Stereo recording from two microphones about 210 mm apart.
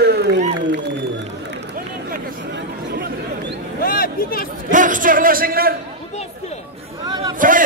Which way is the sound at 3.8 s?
45° left (ahead or behind).